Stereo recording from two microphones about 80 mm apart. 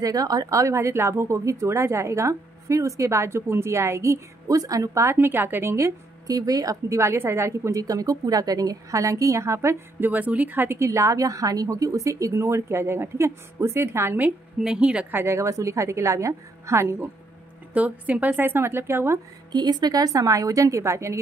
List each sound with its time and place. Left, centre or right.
0.0 s a woman's voice: right
5.1 s a woman's voice: right
10.0 s a woman's voice: right
10.8 s a woman's voice: right
14.6 s a woman's voice: centre
15.1 s a woman's voice: right
17.7 s a woman's voice: centre
19.5 s a woman's voice: right